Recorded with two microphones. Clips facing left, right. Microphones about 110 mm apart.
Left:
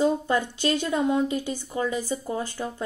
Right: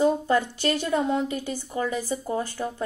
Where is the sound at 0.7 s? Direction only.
20° left (ahead or behind).